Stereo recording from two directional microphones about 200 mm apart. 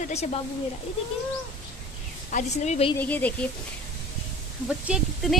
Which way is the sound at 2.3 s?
35° left (ahead or behind).